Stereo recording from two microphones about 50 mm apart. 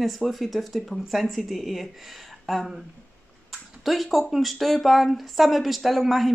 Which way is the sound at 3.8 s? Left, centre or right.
Centre.